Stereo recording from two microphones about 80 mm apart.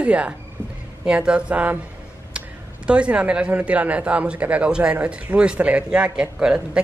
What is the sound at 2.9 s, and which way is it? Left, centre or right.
A woman's voice, centre.